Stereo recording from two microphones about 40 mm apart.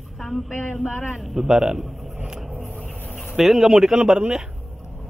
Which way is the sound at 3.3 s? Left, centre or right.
Centre.